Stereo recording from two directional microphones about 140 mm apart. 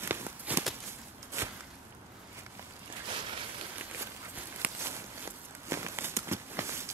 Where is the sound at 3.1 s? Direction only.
40° right (ahead or behind).